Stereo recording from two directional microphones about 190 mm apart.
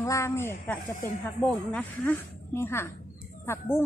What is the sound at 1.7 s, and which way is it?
Speech, 10° left (ahead or behind).